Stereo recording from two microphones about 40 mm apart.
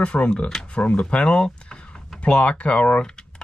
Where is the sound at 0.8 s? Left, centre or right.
Left.